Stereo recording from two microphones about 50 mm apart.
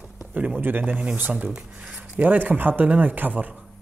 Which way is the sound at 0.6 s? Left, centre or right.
Right.